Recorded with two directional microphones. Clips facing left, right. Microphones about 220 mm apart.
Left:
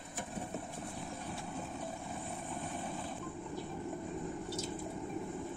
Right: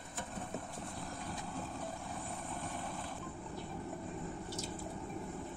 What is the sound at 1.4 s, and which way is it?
Vehicle, centre (ahead or behind).